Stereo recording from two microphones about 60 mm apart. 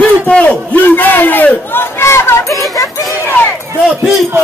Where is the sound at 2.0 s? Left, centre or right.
Left.